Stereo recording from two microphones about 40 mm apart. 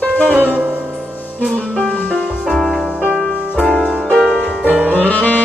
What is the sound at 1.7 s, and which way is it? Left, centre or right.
Music, centre.